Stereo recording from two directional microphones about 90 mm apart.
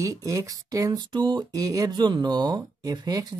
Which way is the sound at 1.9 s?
55° right (ahead or behind).